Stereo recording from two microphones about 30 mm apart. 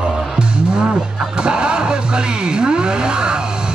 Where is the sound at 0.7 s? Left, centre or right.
Right.